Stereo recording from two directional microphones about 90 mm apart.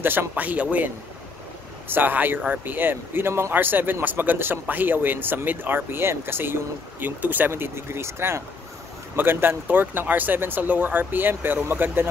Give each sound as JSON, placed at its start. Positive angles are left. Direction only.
{"t": 0.0, "sound": "speech", "side_deg": -25}